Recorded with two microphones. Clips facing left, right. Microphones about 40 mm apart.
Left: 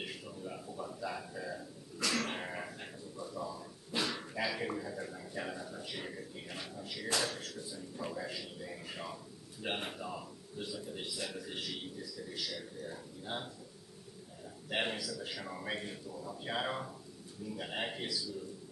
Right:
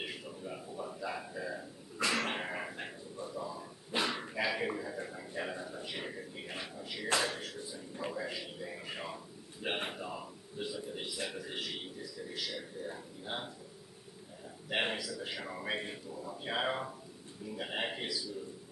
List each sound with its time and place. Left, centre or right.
0.0 s a man's voice: centre
2.0 s a man's voice: right
14.7 s a man's voice: centre